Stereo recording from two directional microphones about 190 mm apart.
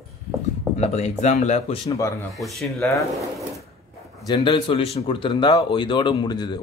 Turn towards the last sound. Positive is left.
turn(degrees=20)  # may be behind; listen again after turning